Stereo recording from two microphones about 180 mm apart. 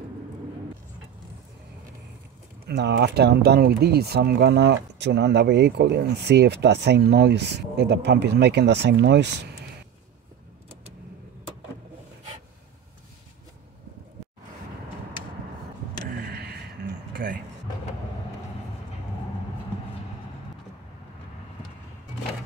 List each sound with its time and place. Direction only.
2.6 s speech: 70° right (ahead or behind)
16.1 s a sound: 60° right (ahead or behind)
17.1 s vehicle: 55° right (ahead or behind)